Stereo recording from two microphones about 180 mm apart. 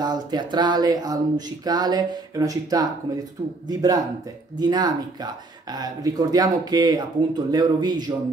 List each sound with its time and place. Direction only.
0.0 s speech: 25° right (ahead or behind)